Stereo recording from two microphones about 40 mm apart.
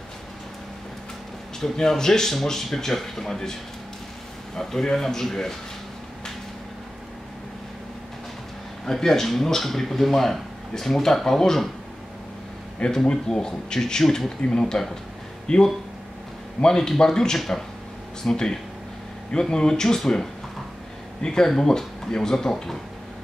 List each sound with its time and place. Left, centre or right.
1.6 s speech: centre
4.6 s speech: centre
8.9 s speech: centre
12.9 s speech: centre